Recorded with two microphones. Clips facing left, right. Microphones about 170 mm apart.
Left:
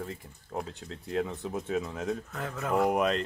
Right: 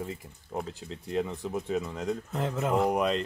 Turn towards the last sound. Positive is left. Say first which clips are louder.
# even
turn(degrees=0)  # may be behind; listen again after turning